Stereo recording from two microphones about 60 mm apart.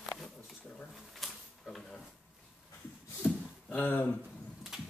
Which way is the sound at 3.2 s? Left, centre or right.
Left.